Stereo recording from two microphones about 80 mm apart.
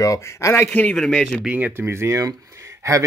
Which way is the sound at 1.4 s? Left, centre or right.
Right.